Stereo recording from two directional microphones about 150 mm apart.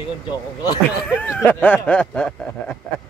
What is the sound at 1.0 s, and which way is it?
Speech, 10° left (ahead or behind).